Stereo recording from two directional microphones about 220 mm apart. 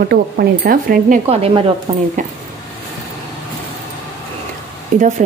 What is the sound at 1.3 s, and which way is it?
A woman's voice, 25° right (ahead or behind).